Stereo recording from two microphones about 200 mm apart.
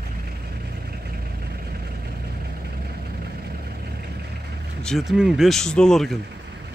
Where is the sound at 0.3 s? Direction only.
50° right (ahead or behind).